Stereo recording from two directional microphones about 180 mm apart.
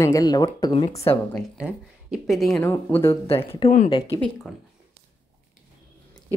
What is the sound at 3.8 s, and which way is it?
Speech, 25° left (ahead or behind).